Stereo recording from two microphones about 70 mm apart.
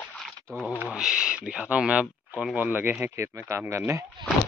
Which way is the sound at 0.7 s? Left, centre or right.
Right.